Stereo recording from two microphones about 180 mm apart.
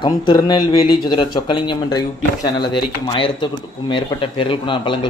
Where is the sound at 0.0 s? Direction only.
25° left (ahead or behind).